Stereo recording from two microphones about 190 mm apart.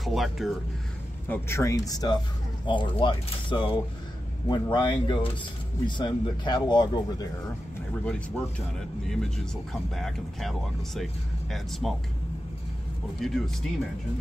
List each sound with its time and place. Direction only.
0.0 s speech: centre (ahead or behind)
1.3 s speech: 15° left (ahead or behind)
8.0 s speech: 5° left (ahead or behind)
11.8 s speech: centre (ahead or behind)
13.2 s speech: centre (ahead or behind)